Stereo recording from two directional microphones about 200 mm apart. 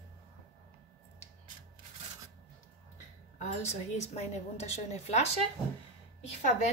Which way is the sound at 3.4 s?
35° left (ahead or behind).